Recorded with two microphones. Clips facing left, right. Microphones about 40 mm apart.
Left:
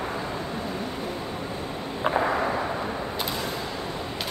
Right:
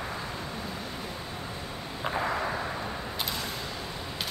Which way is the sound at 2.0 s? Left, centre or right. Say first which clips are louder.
Left 6 dB; centre.